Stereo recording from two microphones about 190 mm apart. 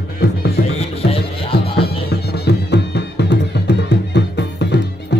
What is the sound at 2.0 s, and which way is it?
Music, 60° left (ahead or behind).